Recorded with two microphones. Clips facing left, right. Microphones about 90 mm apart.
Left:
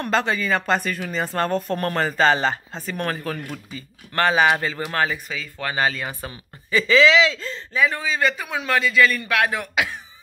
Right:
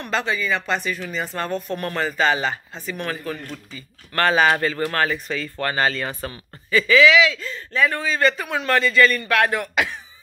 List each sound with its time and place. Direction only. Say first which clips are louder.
0.0 s speech: left 2 dB; 40° left (ahead or behind)
4.1 s a man's voice: even; 20° left (ahead or behind)
5.3 s speech: right 3 dB; 5° left (ahead or behind); by 7.6 s 30° left (ahead or behind)
7.7 s a man's voice: right 1 dB; 10° left (ahead or behind)